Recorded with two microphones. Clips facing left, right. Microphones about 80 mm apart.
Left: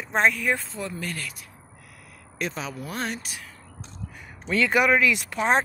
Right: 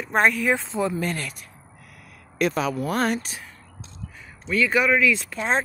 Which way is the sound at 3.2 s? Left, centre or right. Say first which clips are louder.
Right 2 dB; right.